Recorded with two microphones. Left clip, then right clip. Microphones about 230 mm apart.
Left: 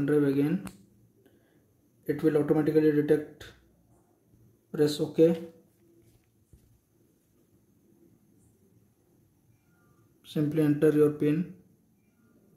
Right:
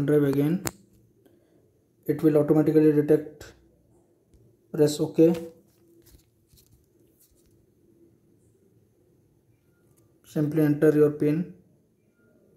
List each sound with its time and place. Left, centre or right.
0.0 s speech: centre
2.0 s speech: centre
4.6 s speech: centre
10.2 s speech: centre